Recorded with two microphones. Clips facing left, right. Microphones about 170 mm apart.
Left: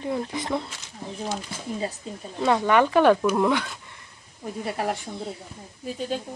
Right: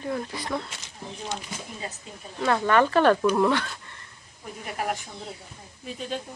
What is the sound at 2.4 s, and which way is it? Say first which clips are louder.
Speech: left 1 dB; 15° left (ahead or behind).